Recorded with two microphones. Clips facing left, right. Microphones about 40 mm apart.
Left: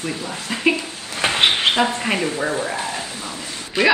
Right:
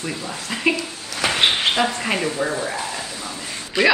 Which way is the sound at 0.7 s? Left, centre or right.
Left.